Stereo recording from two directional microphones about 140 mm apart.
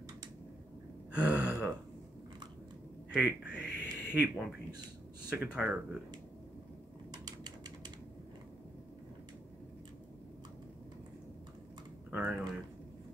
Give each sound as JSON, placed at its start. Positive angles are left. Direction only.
{"t": 1.1, "sound": "gasp", "side_deg": -10}
{"t": 3.1, "sound": "speech", "side_deg": -5}
{"t": 7.1, "sound": "a sound", "side_deg": -30}
{"t": 12.1, "sound": "speech", "side_deg": -5}